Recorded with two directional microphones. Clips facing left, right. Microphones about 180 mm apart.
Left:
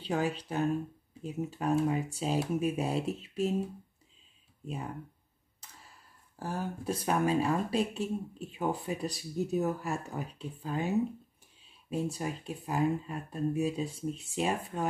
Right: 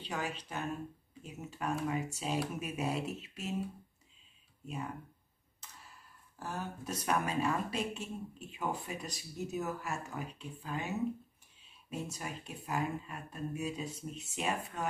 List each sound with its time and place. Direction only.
0.0 s speech: 35° left (ahead or behind)
6.4 s speech: 30° left (ahead or behind)